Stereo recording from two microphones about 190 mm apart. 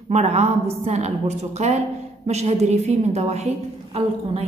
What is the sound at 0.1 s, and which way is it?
A woman's voice, 35° right (ahead or behind).